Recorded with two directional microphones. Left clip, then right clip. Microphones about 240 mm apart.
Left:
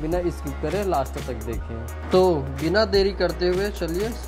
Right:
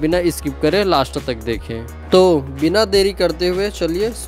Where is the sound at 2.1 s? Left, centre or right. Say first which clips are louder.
Right 7 dB; right.